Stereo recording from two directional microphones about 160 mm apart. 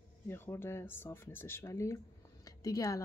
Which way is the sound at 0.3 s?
15° left (ahead or behind).